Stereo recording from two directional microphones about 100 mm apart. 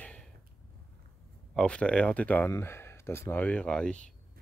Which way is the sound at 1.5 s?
10° left (ahead or behind).